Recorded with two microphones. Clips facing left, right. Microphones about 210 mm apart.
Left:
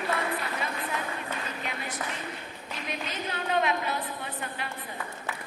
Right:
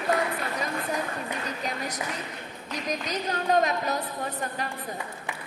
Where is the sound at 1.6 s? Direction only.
40° right (ahead or behind).